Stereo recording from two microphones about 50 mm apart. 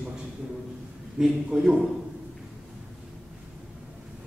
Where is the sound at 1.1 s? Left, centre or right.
Centre.